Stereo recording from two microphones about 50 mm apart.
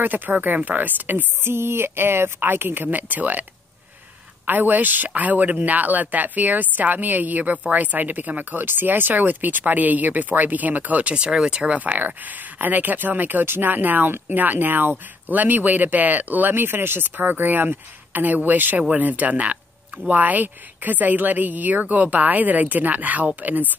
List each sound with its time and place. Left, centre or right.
0.0 s speech: right
1.5 s speech: right
4.5 s speech: right; by 11.8 s centre
11.8 s speech: right
18.8 s speech: right